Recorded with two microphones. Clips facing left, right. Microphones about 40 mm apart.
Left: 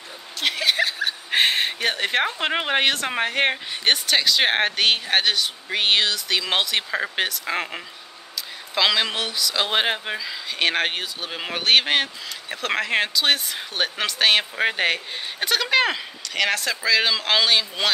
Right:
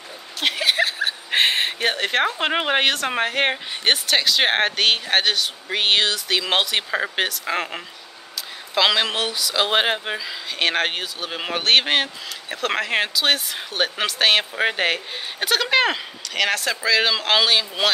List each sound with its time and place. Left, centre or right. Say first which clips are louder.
0.4 s chuckle: right 1 dB; centre
2.3 s speech: right 2 dB; centre